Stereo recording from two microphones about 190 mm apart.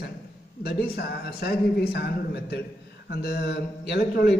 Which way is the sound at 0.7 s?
55° left (ahead or behind).